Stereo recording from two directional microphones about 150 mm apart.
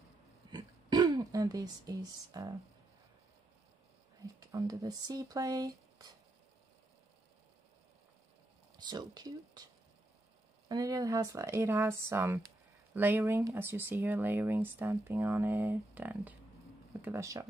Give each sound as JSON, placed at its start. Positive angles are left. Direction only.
{"t": 0.5, "sound": "speech", "side_deg": -30}
{"t": 4.4, "sound": "speech", "side_deg": -25}
{"t": 8.7, "sound": "speech", "side_deg": -30}
{"t": 10.7, "sound": "speech", "side_deg": -25}